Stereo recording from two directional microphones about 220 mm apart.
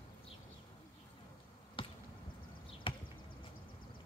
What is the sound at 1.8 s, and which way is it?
Basketball bounce, 20° left (ahead or behind).